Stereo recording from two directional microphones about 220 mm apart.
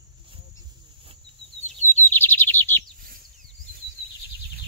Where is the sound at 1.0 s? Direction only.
25° right (ahead or behind).